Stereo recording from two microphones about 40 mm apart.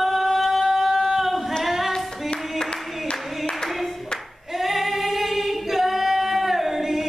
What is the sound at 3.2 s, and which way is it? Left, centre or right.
Clapping, centre.